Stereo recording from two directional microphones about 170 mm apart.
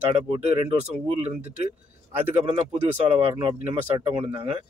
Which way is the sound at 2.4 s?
35° right (ahead or behind).